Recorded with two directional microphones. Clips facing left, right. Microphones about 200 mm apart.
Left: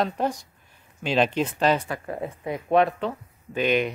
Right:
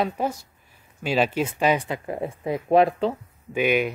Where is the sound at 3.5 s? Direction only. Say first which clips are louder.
Right 1 dB; 10° right (ahead or behind).